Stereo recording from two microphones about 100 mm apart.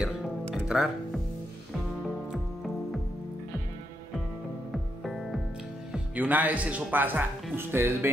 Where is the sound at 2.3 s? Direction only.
5° right (ahead or behind).